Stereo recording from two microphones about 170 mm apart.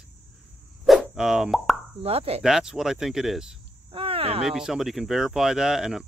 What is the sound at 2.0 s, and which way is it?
Speech, 35° right (ahead or behind).